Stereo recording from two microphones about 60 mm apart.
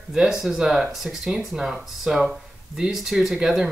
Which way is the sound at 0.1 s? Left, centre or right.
Centre.